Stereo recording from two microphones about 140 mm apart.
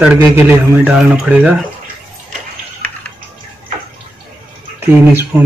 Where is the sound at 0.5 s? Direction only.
5° right (ahead or behind).